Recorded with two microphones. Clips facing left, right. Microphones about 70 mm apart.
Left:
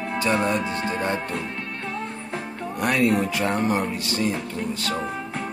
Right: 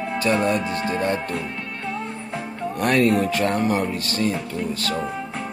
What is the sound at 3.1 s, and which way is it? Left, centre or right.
Speech, left.